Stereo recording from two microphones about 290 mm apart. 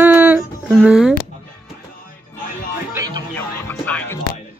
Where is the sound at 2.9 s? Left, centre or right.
Centre.